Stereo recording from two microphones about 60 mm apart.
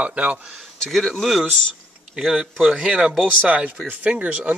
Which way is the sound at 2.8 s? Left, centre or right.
Centre.